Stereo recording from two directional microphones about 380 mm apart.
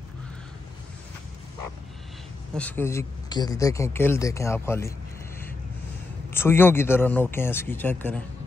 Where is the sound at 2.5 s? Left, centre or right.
Centre.